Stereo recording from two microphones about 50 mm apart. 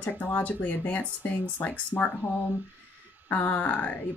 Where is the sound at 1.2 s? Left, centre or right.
Left.